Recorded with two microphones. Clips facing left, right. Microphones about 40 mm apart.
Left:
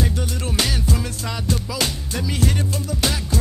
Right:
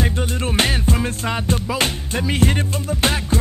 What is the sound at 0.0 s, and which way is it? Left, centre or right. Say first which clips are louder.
Music: right 3 dB; right.